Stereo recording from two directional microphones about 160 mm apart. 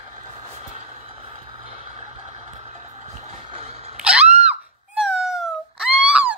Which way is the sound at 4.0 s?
10° right (ahead or behind).